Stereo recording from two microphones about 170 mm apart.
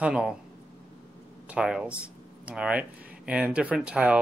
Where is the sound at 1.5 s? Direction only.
5° right (ahead or behind).